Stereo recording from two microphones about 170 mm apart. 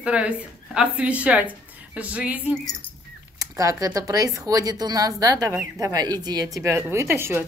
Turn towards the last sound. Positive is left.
turn(degrees=-15)  # may be behind; listen again after turning